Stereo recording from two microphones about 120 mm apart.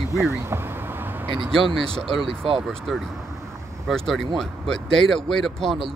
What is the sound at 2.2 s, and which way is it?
Speech, 50° right (ahead or behind).